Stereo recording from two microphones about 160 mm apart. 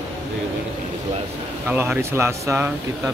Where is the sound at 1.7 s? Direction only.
10° right (ahead or behind).